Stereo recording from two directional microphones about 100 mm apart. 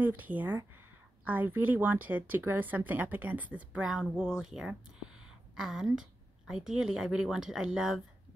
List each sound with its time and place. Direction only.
0.0 s a woman's voice: 20° right (ahead or behind)